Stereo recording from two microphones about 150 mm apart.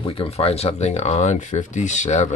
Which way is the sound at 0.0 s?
35° left (ahead or behind).